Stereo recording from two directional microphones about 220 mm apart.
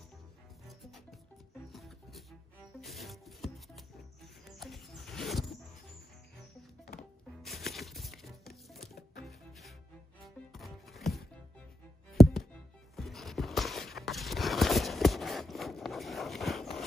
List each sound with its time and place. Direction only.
1.7 s music: centre (ahead or behind)
7.0 s music: centre (ahead or behind)